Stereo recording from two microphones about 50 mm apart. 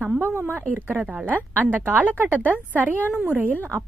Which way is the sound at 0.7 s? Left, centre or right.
Right.